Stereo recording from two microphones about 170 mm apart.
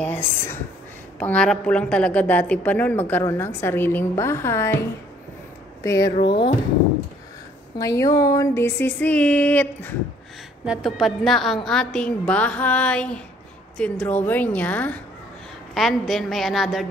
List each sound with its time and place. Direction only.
0.0 s a woman's voice: 10° left (ahead or behind)
5.9 s speech: 20° left (ahead or behind)
6.2 s speech: 30° left (ahead or behind)
7.8 s a woman's voice: 20° left (ahead or behind)
10.6 s a woman's voice: centre (ahead or behind)